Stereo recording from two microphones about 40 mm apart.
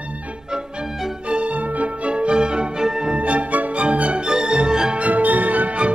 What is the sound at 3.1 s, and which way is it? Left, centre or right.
Music, right.